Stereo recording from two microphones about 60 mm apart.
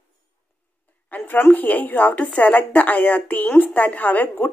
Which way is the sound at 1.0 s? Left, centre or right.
Left.